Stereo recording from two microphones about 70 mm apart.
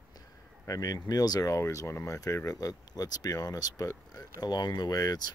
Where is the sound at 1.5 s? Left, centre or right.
Left.